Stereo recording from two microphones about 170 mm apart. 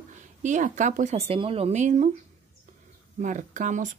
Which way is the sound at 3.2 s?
50° right (ahead or behind).